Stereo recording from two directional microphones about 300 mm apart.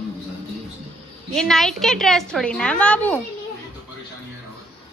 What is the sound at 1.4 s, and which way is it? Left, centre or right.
A woman's voice, centre.